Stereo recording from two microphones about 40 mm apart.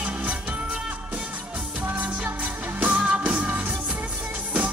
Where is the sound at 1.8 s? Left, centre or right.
Right.